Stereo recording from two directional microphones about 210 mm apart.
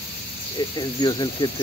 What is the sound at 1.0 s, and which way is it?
Speech, 20° left (ahead or behind).